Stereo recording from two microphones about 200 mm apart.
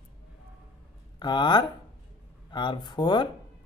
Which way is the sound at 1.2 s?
20° left (ahead or behind).